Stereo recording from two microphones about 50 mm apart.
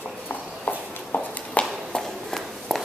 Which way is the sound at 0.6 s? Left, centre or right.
Left.